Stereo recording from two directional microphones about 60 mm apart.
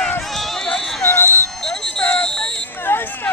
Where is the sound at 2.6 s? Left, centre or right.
Left.